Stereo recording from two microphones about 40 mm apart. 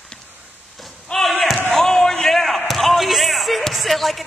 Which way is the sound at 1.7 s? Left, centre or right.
Centre.